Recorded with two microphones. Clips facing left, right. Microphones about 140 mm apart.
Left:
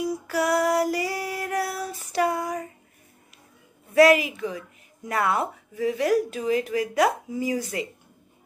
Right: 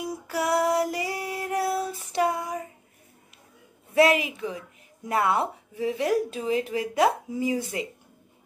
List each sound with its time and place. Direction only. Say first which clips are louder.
0.0 s female singing: left 3 dB; 25° right (ahead or behind)
3.9 s a woman's voice: left 4 dB; 25° right (ahead or behind)